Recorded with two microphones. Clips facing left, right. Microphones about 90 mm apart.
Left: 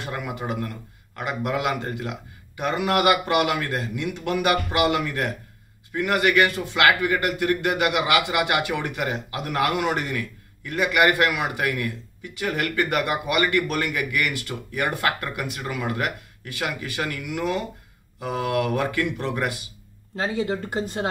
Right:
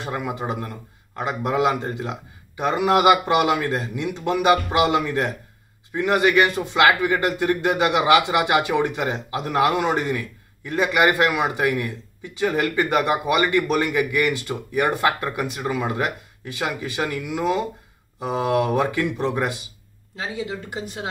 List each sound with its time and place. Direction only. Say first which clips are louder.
0.0 s a man's voice: right 3 dB; 20° right (ahead or behind)
20.2 s speech: left 4 dB; 45° left (ahead or behind)